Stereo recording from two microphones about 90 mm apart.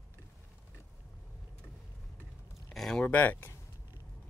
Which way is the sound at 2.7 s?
5° left (ahead or behind).